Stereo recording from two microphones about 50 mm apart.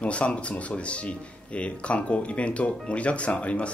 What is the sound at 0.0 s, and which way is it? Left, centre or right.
Speech, left.